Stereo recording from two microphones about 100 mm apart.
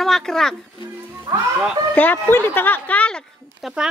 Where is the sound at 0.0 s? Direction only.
5° left (ahead or behind).